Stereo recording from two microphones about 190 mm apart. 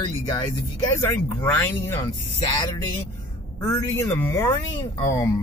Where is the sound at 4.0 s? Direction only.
15° left (ahead or behind).